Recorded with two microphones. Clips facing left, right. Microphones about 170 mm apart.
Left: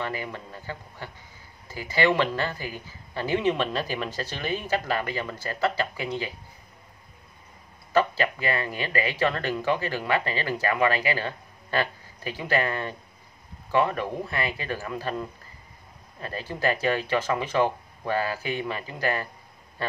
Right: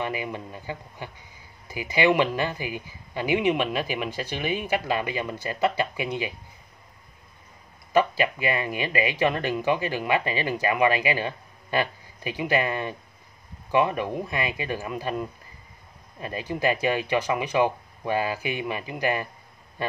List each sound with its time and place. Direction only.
0.0 s speech: 15° right (ahead or behind)
7.9 s speech: 15° right (ahead or behind)